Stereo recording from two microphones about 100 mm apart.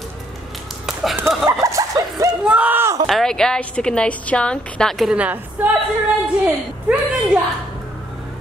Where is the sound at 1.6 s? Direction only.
30° right (ahead or behind).